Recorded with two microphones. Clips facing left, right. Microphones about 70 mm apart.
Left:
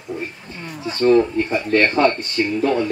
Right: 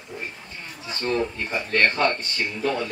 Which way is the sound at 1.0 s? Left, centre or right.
Left.